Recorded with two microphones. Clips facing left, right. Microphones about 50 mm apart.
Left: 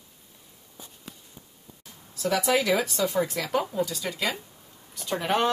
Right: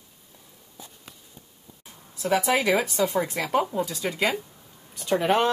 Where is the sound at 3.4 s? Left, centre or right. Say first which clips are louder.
Right 2 dB; right.